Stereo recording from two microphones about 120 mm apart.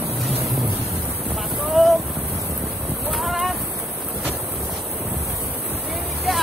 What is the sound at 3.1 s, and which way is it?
Boat, centre (ahead or behind).